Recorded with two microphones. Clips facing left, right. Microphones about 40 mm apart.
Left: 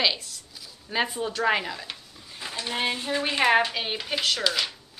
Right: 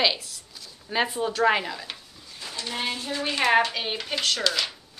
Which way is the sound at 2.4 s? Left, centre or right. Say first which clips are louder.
Left 2 dB; left.